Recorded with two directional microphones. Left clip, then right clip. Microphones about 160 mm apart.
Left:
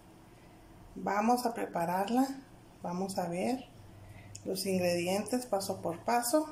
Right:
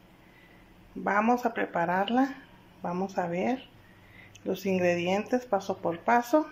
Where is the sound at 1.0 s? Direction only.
10° left (ahead or behind).